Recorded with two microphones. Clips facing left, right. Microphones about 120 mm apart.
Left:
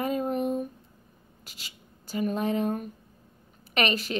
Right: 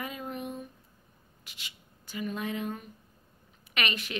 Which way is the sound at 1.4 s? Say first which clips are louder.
Left 1 dB; 35° left (ahead or behind).